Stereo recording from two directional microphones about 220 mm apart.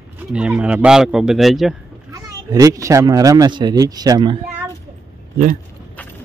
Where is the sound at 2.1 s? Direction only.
15° right (ahead or behind).